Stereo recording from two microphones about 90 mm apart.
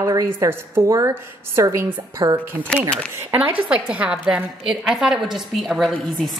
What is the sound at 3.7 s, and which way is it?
A woman's voice, 10° right (ahead or behind).